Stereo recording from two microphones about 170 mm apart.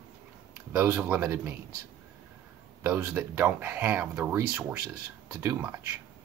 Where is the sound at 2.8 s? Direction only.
15° right (ahead or behind).